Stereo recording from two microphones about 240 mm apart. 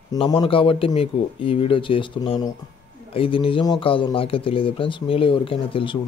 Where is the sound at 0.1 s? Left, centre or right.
Centre.